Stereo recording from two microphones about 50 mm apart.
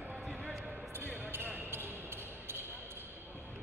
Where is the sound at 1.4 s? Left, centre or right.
Right.